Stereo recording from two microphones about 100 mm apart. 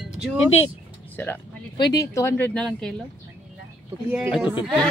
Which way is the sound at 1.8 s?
40° left (ahead or behind).